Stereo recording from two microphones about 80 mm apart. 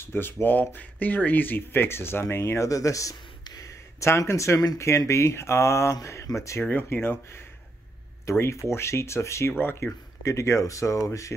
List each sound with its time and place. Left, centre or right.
0.0 s speech: left
3.4 s a sound: left
4.0 s speech: left
6.6 s speech: left
10.2 s speech: left